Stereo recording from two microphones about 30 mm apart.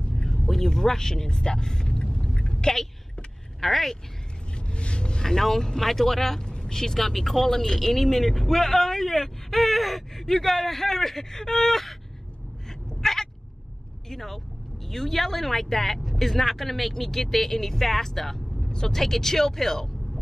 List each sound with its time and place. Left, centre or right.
0.2 s a woman's voice: centre
3.6 s speech: centre
4.6 s vehicle: left
5.2 s speech: centre
6.4 s speech: left
9.6 s gasp: centre
10.2 s speech: centre
12.6 s a sound: centre
14.0 s speech: centre
18.7 s speech: left
18.9 s speech: centre